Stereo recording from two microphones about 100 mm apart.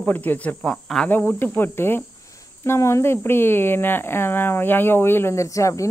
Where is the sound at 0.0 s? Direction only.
15° left (ahead or behind).